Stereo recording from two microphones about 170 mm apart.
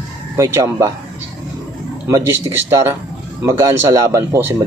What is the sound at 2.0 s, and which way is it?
Speech, 15° right (ahead or behind).